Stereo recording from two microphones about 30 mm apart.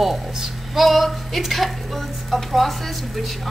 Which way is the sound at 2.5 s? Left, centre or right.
Centre.